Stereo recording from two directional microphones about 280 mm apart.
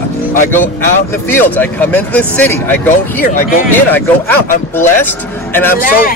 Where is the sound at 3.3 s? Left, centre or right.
Left.